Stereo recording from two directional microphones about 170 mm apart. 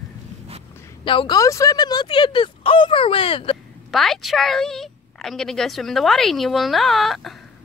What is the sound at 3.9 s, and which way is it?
A woman's voice, centre (ahead or behind).